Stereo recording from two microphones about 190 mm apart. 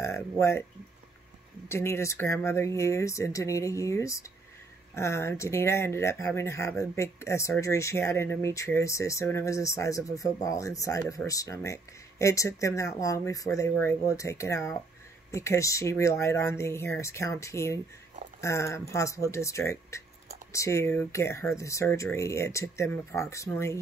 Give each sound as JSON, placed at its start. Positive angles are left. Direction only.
{"t": 0.0, "sound": "speech", "side_deg": 15}
{"t": 1.7, "sound": "speech", "side_deg": 15}